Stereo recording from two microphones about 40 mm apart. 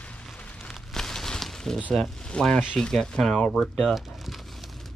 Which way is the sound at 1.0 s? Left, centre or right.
Centre.